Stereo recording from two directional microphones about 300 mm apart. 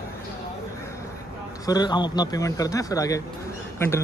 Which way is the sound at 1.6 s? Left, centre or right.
Centre.